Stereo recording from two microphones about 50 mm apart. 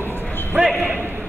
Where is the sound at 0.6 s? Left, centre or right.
Centre.